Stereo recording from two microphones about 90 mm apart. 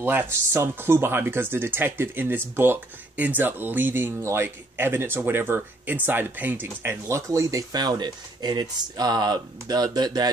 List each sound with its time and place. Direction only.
0.0 s speech: 25° right (ahead or behind)
7.7 s speech: 50° right (ahead or behind)